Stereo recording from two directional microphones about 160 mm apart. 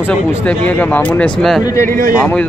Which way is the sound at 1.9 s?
60° right (ahead or behind).